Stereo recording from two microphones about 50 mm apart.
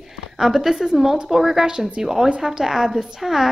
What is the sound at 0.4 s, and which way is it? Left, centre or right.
A woman's voice, centre.